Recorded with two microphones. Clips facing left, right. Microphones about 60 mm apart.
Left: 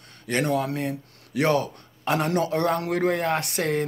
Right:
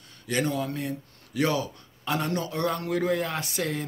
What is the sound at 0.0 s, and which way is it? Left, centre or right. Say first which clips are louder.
Speech: left 2 dB; left.